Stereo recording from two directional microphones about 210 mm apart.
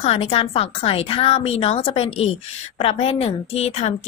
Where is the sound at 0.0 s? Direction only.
30° left (ahead or behind).